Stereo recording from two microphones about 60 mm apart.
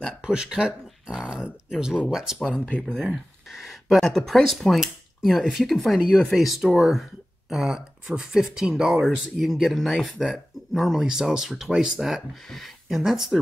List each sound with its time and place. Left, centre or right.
0.2 s speech: centre
2.5 s speech: centre
3.1 s speech: centre